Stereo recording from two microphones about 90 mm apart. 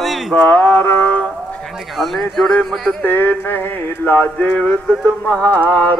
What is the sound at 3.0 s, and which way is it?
Mantra, 20° left (ahead or behind).